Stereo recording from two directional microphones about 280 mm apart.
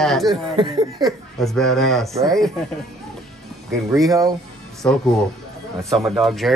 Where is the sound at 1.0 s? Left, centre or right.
Centre.